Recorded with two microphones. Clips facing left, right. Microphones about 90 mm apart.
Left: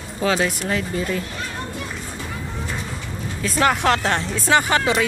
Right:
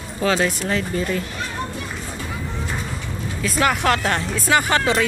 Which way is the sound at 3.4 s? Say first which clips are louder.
Left 1 dB; 30° left (ahead or behind).